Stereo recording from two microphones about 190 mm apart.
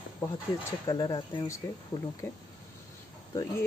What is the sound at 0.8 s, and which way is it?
Speech, 20° left (ahead or behind).